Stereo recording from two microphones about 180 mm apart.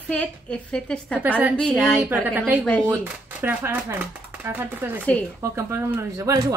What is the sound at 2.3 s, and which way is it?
A woman's voice, 10° right (ahead or behind).